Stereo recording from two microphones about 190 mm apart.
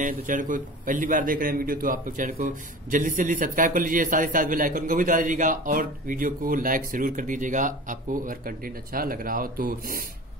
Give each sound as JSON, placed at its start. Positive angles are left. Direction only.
{"t": 0.0, "sound": "a man's voice", "side_deg": -45}